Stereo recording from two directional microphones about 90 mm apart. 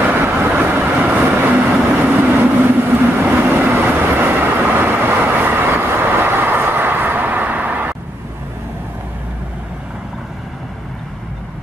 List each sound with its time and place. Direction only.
0.0 s train: 20° right (ahead or behind)
2.0 s vehicle: 20° right (ahead or behind)